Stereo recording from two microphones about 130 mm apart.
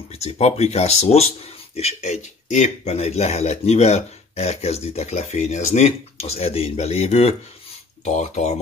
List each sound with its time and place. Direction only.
0.2 s speech: 55° left (ahead or behind)